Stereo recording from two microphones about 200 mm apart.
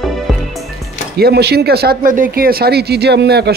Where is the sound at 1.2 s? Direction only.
55° right (ahead or behind).